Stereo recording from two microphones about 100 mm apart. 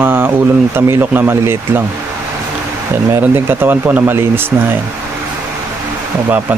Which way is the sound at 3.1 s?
20° right (ahead or behind).